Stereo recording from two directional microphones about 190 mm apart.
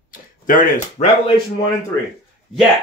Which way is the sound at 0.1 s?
45° left (ahead or behind).